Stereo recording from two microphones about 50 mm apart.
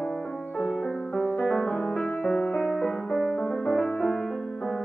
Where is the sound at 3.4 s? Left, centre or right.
Centre.